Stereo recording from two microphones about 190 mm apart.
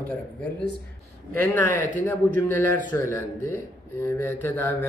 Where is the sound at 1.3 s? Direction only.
10° left (ahead or behind).